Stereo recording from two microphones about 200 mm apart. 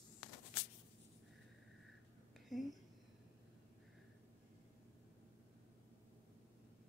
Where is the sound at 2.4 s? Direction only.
Centre (ahead or behind).